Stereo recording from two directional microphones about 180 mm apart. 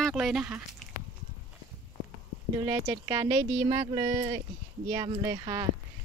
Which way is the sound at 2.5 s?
15° right (ahead or behind).